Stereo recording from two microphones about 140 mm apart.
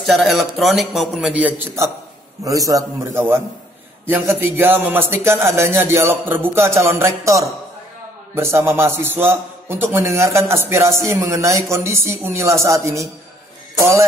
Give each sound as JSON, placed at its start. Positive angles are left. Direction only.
{"t": 0.0, "sound": "a man's voice", "side_deg": 0}
{"t": 2.4, "sound": "a man's voice", "side_deg": -25}